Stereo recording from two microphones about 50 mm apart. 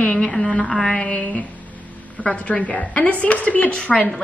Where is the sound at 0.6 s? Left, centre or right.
Centre.